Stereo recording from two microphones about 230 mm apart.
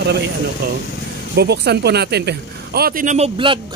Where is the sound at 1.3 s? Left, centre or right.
Right.